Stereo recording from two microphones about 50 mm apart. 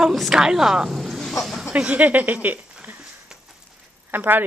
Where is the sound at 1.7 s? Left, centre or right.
Right.